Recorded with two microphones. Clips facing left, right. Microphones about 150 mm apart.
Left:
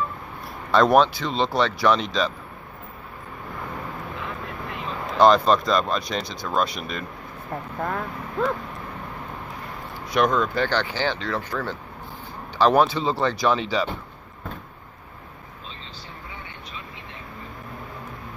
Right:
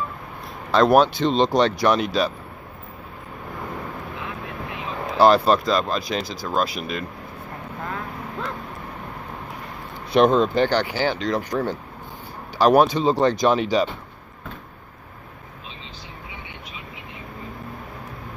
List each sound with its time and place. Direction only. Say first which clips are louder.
0.7 s speech: right 1 dB; centre (ahead or behind)
1.1 s speech: right 5 dB; 20° right (ahead or behind)
4.3 s speech: right 1 dB; centre (ahead or behind)
10.1 s speech: right 5 dB; 30° right (ahead or behind)